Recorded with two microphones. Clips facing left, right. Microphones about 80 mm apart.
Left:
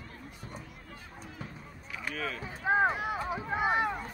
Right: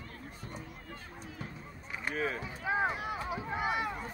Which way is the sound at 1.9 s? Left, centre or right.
Right.